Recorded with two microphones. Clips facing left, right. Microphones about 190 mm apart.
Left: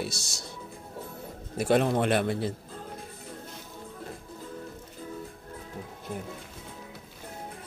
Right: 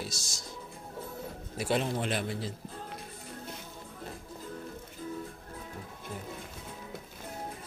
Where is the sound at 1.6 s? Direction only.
55° left (ahead or behind).